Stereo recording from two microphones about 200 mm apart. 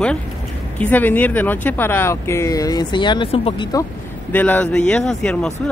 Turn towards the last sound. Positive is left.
turn(degrees=5)  # may be behind; listen again after turning